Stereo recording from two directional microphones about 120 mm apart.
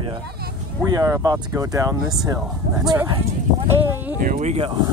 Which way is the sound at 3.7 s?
20° right (ahead or behind).